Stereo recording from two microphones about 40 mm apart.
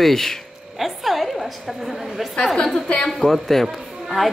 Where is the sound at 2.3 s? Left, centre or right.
Centre.